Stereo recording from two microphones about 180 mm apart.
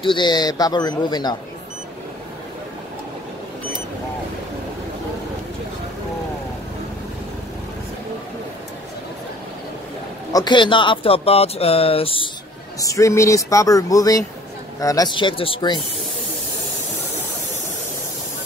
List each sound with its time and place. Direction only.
0.0 s speech: 25° left (ahead or behind)
10.3 s speech: 25° left (ahead or behind)
12.8 s speech: 15° left (ahead or behind)